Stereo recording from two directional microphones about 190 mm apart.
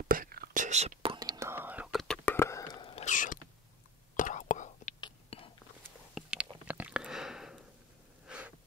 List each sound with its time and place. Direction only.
0.1 s whispering: 50° right (ahead or behind); by 2.1 s centre (ahead or behind)
2.2 s whispering: 15° left (ahead or behind)
3.1 s creak: 45° left (ahead or behind)
4.2 s whispering: 40° left (ahead or behind)
5.0 s whispering: 30° left (ahead or behind)
6.1 s a sound: 5° right (ahead or behind)
8.3 s snort: 5° right (ahead or behind)